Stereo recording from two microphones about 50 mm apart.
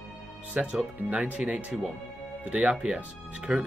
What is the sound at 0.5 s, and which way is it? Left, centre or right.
Speech, right.